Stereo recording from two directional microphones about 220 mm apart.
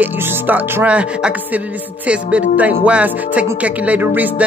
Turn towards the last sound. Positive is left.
turn(degrees=-10)  # may be behind; listen again after turning